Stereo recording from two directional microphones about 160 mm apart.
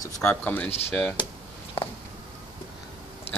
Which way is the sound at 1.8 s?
35° left (ahead or behind).